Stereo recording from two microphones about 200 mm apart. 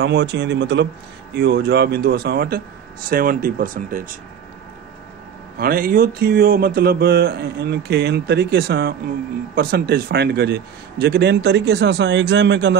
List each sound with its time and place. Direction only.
0.0 s a man's voice: 60° right (ahead or behind)
1.3 s mantra: 50° right (ahead or behind)
5.6 s mantra: 45° right (ahead or behind)
9.6 s a man's voice: 50° right (ahead or behind)